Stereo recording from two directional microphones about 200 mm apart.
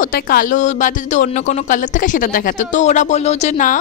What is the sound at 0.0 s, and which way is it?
Speech, 45° left (ahead or behind).